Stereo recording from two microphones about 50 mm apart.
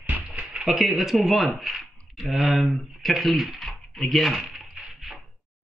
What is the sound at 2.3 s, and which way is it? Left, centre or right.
Speech, centre.